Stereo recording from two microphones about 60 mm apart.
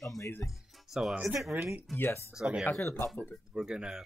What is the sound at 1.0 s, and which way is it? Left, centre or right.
Speech, centre.